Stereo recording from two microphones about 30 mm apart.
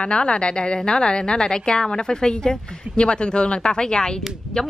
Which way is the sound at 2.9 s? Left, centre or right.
Left.